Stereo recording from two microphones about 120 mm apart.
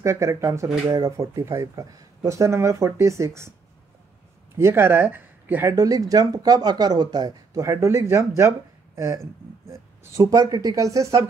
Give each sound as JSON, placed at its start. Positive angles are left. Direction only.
{"t": 0.0, "sound": "speech", "side_deg": -25}
{"t": 4.6, "sound": "speech", "side_deg": -20}